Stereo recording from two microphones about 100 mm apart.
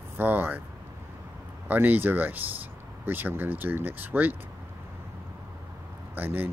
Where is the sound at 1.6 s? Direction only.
20° right (ahead or behind).